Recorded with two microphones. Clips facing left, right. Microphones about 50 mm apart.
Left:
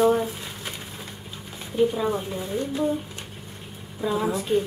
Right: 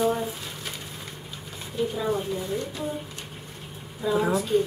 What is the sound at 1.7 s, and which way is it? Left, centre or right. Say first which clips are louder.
Speech: left 7 dB; left.